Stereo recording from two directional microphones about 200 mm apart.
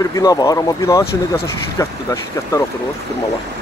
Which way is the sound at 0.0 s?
15° left (ahead or behind).